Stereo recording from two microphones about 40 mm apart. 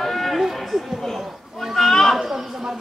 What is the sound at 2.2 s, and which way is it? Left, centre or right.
Speech, centre.